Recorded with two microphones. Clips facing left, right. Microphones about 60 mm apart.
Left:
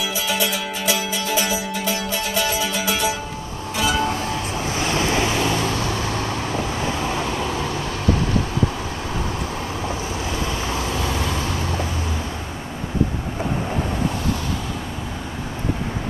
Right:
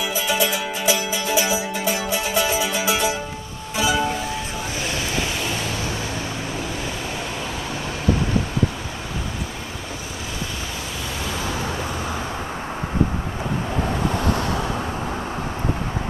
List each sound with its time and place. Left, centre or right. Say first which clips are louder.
0.0 s music: right 1 dB; centre
4.9 s vehicle: left 7 dB; left